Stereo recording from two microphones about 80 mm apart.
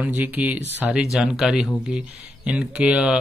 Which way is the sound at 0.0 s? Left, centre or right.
Right.